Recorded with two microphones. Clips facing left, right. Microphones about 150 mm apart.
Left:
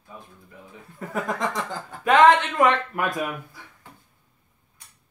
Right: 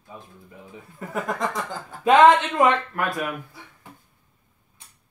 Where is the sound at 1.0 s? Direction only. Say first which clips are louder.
Even; centre (ahead or behind).